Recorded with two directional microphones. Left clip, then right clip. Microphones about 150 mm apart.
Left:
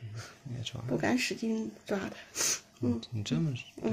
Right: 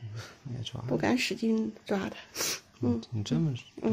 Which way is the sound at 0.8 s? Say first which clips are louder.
Right 2 dB; 50° right (ahead or behind).